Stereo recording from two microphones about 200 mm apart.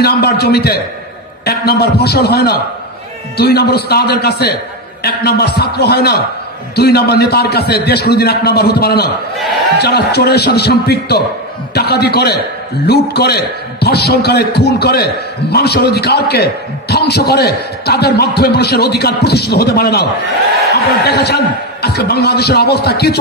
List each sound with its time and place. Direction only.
0.0 s a man's voice: 50° left (ahead or behind)